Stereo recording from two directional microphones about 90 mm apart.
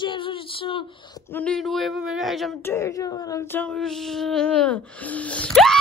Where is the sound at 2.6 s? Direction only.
25° left (ahead or behind).